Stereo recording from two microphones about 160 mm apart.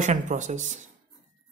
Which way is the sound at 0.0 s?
50° right (ahead or behind).